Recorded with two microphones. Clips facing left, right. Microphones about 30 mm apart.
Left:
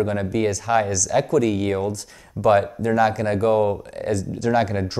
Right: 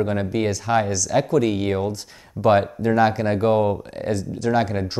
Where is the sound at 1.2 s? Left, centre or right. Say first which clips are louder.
Even; right.